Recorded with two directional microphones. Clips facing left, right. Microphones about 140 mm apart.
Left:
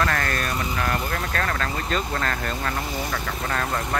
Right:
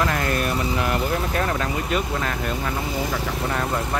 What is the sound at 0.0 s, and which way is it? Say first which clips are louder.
Speech: right 2 dB; 15° right (ahead or behind).